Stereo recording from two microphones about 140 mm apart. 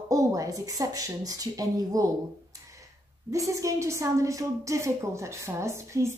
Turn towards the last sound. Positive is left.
turn(degrees=-20)  # may be behind; listen again after turning